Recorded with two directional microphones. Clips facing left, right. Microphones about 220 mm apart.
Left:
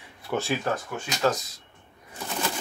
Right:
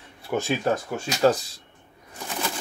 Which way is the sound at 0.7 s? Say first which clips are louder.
Right 4 dB; 35° right (ahead or behind).